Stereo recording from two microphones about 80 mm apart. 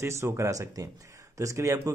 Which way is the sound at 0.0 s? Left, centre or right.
Right.